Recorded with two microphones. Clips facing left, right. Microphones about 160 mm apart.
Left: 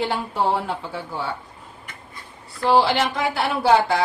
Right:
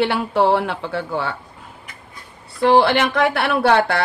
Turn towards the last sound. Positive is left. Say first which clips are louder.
# right 2 dB
turn(degrees=-65)  # may be behind; listen again after turning